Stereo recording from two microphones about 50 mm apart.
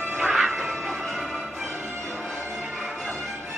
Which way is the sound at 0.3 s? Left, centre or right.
Centre.